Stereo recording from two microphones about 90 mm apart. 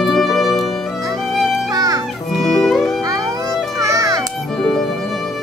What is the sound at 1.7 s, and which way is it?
Music, 45° right (ahead or behind).